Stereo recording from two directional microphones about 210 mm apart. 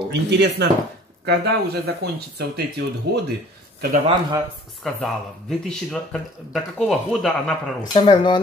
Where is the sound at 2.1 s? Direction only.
50° right (ahead or behind).